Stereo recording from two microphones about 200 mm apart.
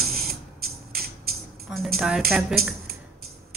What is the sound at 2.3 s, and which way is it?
Speech, centre (ahead or behind).